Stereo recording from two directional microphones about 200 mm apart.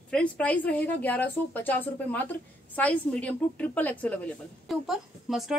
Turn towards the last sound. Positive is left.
turn(degrees=0)  # may be behind; listen again after turning